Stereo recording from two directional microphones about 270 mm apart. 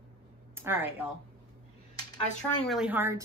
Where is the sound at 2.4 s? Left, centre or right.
Centre.